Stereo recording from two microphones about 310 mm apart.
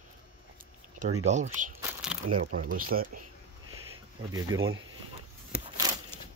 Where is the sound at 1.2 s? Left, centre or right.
Right.